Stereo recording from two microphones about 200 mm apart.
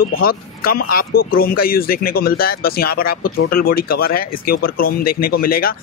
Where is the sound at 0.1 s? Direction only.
45° left (ahead or behind).